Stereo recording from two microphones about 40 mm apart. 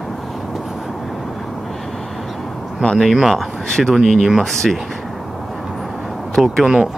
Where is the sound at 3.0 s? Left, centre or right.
Centre.